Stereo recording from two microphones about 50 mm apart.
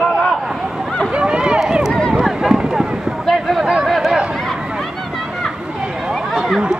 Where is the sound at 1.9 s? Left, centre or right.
Centre.